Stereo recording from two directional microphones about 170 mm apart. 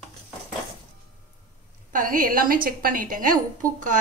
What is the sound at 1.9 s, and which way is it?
A woman's voice, 55° right (ahead or behind).